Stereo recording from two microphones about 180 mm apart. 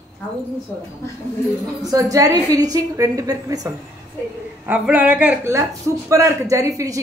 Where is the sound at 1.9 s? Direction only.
20° right (ahead or behind).